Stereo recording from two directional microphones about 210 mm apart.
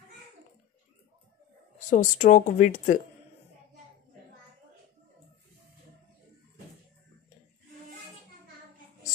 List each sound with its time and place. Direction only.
1.9 s speech: 35° left (ahead or behind)